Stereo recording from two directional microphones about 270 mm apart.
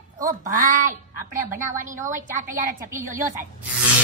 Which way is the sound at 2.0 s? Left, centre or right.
Right.